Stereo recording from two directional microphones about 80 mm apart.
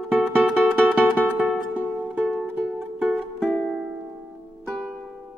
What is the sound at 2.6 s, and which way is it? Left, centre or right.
Music, centre.